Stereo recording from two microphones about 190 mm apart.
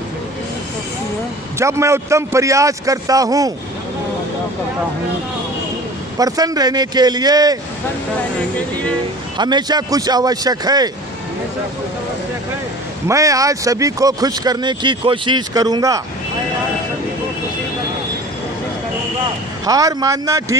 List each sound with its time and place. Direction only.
1.6 s a man's voice: 15° right (ahead or behind)
6.1 s speech: 20° right (ahead or behind)
9.4 s speech: 20° right (ahead or behind)
13.1 s speech: 15° right (ahead or behind)
19.6 s speech: 20° right (ahead or behind)